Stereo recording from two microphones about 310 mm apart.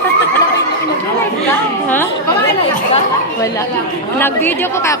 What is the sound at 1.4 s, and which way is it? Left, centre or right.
Speech, centre.